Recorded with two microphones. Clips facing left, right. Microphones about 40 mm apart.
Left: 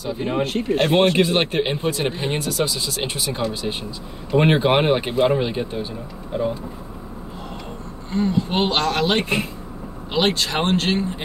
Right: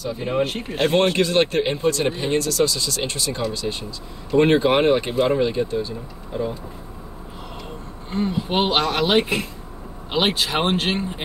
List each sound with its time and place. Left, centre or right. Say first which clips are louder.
0.4 s speech: left 1 dB; centre; by 6.5 s left
8.1 s speech: left 2 dB; centre